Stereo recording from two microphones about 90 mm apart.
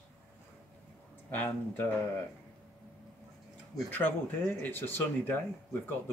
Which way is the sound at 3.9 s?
20° left (ahead or behind).